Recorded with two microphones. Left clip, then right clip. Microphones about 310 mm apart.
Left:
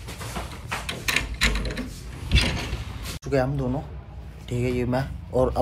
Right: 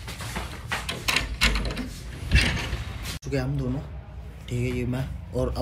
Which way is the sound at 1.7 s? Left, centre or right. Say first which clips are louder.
Left 1 dB; centre.